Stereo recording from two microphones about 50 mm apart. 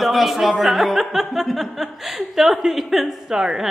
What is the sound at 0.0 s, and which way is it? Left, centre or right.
Speech, centre.